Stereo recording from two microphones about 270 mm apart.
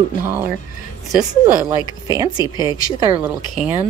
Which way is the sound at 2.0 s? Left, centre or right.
Centre.